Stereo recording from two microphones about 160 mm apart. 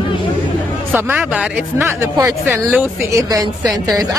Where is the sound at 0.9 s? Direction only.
5° right (ahead or behind).